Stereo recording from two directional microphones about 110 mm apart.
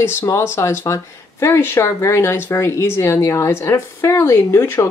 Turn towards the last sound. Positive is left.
turn(degrees=25)  # may be behind; listen again after turning